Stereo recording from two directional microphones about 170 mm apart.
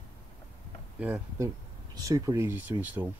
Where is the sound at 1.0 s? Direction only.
10° right (ahead or behind).